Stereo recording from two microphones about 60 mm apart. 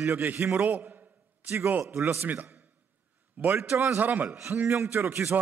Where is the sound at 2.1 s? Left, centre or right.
Right.